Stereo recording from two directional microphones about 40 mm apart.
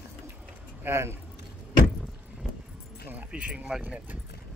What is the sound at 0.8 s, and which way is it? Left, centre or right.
Speech, right.